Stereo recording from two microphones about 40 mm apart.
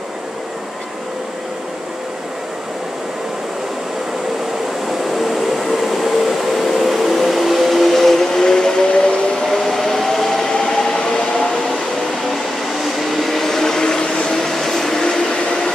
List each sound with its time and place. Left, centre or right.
5.1 s a sound: centre
9.5 s vehicle: centre
10.5 s train: centre
13.1 s train: centre